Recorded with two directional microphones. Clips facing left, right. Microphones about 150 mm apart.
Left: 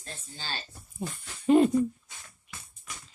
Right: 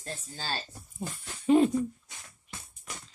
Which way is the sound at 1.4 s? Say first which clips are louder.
Left 1 dB; centre (ahead or behind).